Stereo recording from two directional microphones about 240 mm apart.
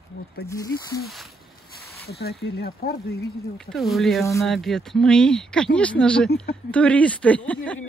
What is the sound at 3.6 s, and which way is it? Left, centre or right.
Speech, centre.